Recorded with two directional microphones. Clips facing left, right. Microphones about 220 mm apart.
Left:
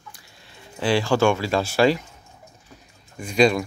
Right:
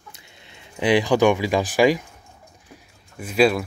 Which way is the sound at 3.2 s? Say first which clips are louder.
Even; 5° right (ahead or behind).